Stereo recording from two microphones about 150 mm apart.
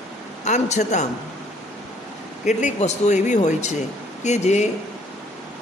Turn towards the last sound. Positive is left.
turn(degrees=50)  # may be behind; listen again after turning